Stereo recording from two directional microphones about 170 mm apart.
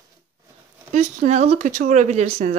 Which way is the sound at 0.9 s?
45° right (ahead or behind).